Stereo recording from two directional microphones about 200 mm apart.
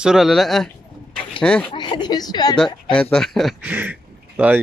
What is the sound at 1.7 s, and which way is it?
Speech, 25° left (ahead or behind).